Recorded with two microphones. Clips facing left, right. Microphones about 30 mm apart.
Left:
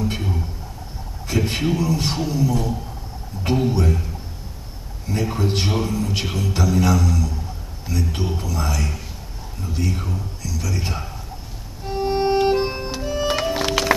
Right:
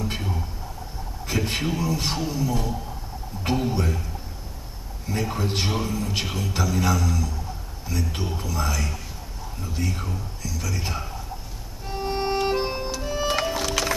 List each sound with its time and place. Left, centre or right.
0.0 s a sound: centre
1.3 s a man's voice: centre
8.4 s a man's voice: centre
11.8 s music: centre
13.8 s music: left